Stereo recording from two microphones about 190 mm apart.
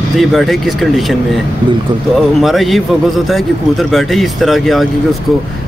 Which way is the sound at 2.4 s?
Centre (ahead or behind).